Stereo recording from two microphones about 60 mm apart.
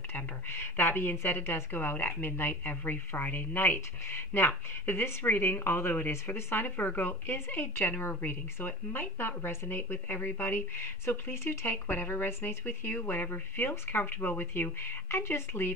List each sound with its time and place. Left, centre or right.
0.1 s speech: left
12.6 s speech: left
13.0 s speech: left